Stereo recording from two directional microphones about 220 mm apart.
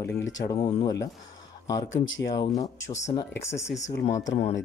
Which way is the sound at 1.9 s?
60° left (ahead or behind).